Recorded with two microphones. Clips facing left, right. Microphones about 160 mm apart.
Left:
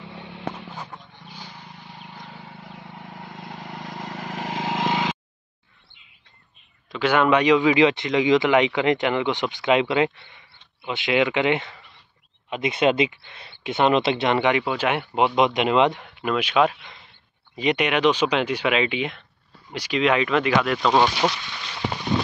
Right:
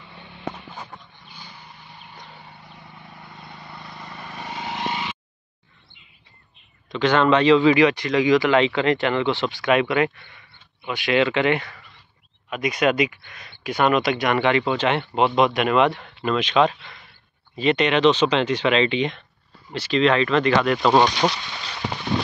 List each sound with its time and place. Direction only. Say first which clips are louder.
0.1 s a sound: left 5 dB; 90° left
1.3 s vehicle: left 3 dB; 90° left
6.9 s speech: right 1 dB; 10° left (ahead or behind)
14.6 s speech: right 2 dB; 10° left (ahead or behind)
20.8 s speech: right 2 dB; 10° right (ahead or behind)